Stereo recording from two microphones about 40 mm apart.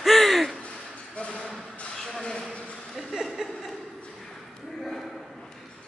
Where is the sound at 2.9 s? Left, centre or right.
Centre.